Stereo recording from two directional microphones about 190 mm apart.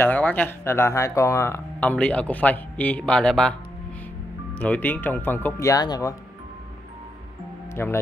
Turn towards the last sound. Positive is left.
turn(degrees=10)  # may be behind; listen again after turning